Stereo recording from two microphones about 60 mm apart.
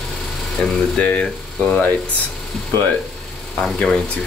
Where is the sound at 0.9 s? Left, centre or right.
Centre.